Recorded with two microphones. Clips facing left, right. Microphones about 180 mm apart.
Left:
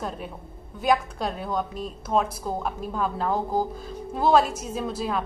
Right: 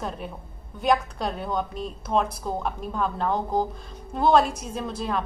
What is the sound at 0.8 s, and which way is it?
A woman's voice, centre (ahead or behind).